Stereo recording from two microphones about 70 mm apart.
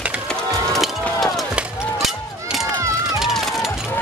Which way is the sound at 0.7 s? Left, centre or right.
Centre.